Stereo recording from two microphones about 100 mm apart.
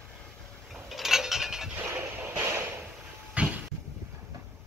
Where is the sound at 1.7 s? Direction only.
20° right (ahead or behind).